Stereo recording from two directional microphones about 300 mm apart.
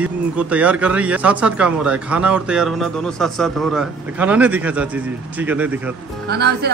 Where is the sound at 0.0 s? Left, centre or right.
Centre.